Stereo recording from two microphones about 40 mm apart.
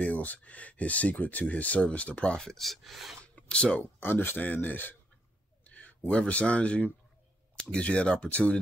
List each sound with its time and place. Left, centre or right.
0.0 s speech: left
2.3 s speech: centre
2.6 s speech: centre
3.4 s speech: left
4.0 s speech: left
4.4 s speech: left
5.6 s speech: left